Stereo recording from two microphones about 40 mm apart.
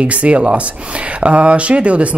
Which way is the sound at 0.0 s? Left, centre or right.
Right.